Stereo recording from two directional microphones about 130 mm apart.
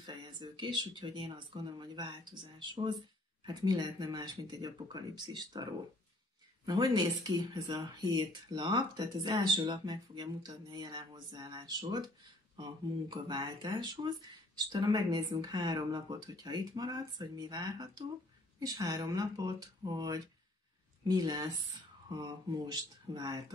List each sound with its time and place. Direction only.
0.0 s speech: 35° right (ahead or behind)